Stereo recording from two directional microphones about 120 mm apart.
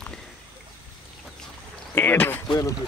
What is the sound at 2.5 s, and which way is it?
Speech, 30° left (ahead or behind).